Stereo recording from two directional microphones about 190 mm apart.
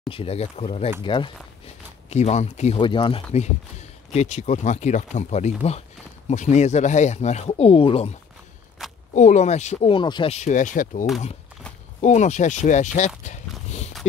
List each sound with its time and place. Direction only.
0.1 s speech: 30° left (ahead or behind)
2.0 s speech: 35° left (ahead or behind)
8.8 s a sound: centre (ahead or behind)
9.1 s speech: 40° left (ahead or behind)